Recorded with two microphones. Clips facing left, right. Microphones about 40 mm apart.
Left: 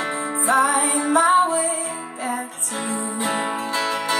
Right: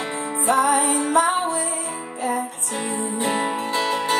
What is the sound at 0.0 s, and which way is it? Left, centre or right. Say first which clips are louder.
Music: left 1 dB; left.